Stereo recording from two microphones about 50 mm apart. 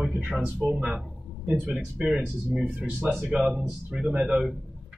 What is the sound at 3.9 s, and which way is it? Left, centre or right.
Speech, centre.